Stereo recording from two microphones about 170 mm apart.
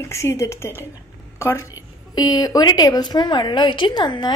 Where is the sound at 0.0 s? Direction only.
15° left (ahead or behind).